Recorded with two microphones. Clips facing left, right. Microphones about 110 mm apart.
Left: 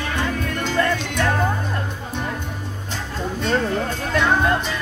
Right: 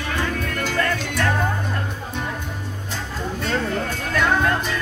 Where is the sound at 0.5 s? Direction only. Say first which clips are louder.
Left 4 dB; 20° left (ahead or behind).